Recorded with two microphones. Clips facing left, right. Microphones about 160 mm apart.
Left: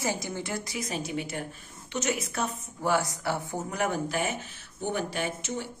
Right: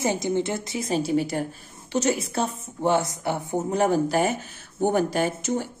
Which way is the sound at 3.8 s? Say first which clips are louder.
Right 8 dB; 35° right (ahead or behind).